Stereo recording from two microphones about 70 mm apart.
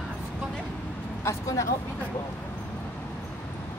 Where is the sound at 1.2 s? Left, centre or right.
Left.